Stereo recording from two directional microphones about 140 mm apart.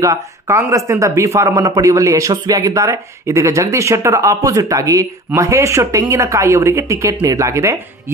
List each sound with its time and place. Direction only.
0.0 s speech: 20° right (ahead or behind)